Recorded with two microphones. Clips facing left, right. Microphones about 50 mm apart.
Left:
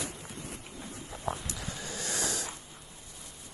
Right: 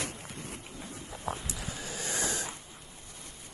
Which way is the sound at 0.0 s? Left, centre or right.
Right.